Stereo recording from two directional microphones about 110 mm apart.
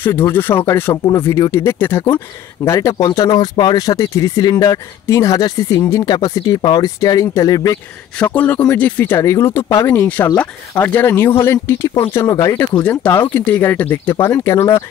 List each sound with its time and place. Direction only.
0.0 s speech: 20° left (ahead or behind)
3.3 s speech: 40° left (ahead or behind)
8.2 s speech: 15° left (ahead or behind)
12.8 s speech: 15° left (ahead or behind)